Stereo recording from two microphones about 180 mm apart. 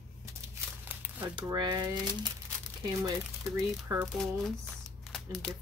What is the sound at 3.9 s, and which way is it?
Speech, 15° right (ahead or behind).